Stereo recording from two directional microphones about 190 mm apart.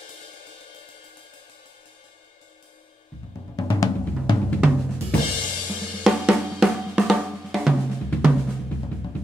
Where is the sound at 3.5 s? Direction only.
20° left (ahead or behind).